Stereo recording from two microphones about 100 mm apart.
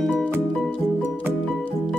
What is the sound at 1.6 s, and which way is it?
Music, 10° left (ahead or behind).